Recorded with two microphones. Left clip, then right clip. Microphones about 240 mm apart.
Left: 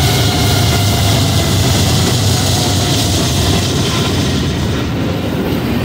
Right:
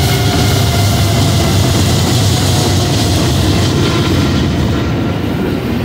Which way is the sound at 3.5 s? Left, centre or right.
Left.